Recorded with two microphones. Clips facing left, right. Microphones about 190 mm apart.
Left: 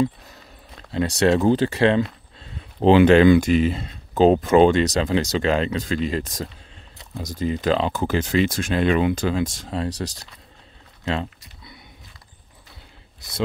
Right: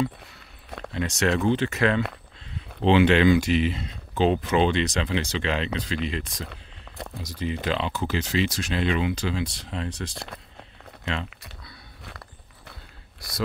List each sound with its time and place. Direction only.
0.7 s a sound: 55° right (ahead or behind)
0.9 s speech: 35° left (ahead or behind)
2.8 s speech: 45° left (ahead or behind)
10.1 s speech: 65° right (ahead or behind)